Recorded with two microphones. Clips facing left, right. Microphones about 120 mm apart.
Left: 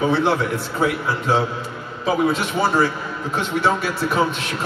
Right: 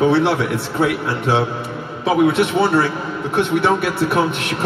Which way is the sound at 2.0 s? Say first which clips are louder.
Right 5 dB; 65° right (ahead or behind).